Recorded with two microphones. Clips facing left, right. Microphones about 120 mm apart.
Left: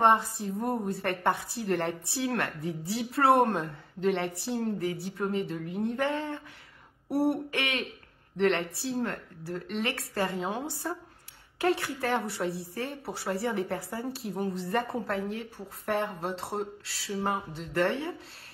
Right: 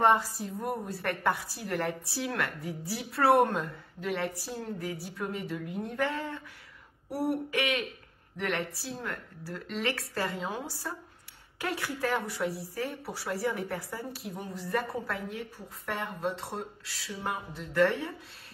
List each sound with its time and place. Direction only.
0.0 s speech: 25° left (ahead or behind)
7.1 s a sound: centre (ahead or behind)
7.5 s speech: 30° left (ahead or behind)
11.6 s speech: 30° left (ahead or behind)